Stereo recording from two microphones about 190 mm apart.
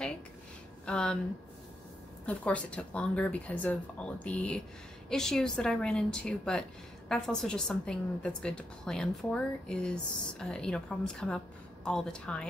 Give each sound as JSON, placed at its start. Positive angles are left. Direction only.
{"t": 0.8, "sound": "speech", "side_deg": 5}
{"t": 2.2, "sound": "a woman's voice", "side_deg": 5}